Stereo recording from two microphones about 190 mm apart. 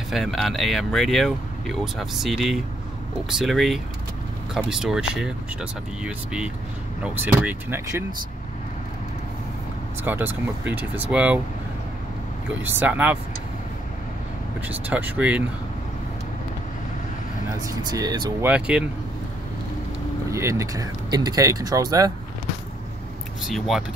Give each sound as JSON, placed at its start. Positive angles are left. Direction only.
{"t": 0.1, "sound": "speech", "side_deg": 0}
{"t": 10.0, "sound": "speech", "side_deg": -10}
{"t": 12.6, "sound": "speech", "side_deg": -10}
{"t": 14.7, "sound": "speech", "side_deg": -10}
{"t": 17.6, "sound": "speech", "side_deg": -20}
{"t": 18.4, "sound": "speech", "side_deg": -5}
{"t": 20.2, "sound": "speech", "side_deg": -15}
{"t": 23.4, "sound": "speech", "side_deg": 0}